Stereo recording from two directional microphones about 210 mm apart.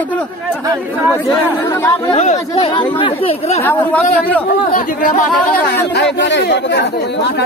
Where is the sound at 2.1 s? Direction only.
30° left (ahead or behind).